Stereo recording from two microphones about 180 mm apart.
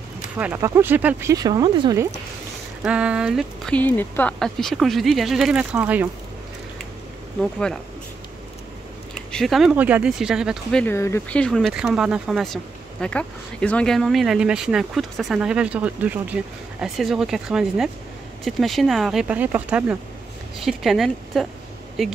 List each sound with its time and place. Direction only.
0.4 s speech: 15° right (ahead or behind)
2.8 s speech: 5° right (ahead or behind)
7.5 s speech: 5° left (ahead or behind)
9.1 s speech: 5° left (ahead or behind)